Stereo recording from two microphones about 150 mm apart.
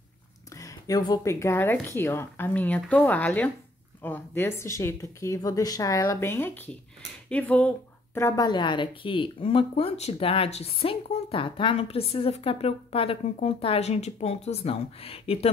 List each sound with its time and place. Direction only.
0.6 s speech: 25° left (ahead or behind)
6.2 s speech: 15° left (ahead or behind)
8.5 s speech: 30° left (ahead or behind)